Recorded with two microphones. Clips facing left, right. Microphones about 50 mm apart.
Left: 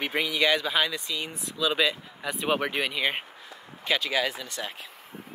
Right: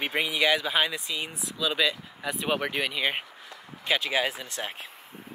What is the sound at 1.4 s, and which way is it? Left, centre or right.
Speech, centre.